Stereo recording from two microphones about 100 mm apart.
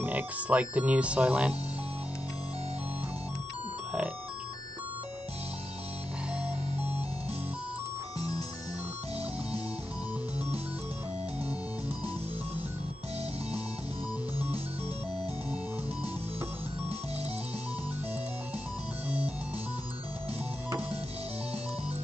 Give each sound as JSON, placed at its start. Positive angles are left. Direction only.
{"t": 0.0, "sound": "speech", "side_deg": -15}
{"t": 6.4, "sound": "music", "side_deg": -20}
{"t": 19.0, "sound": "music", "side_deg": -15}